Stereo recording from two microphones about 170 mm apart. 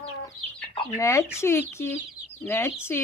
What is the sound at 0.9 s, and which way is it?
Speech, 15° left (ahead or behind).